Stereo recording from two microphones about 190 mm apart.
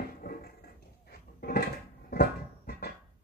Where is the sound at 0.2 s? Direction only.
50° left (ahead or behind).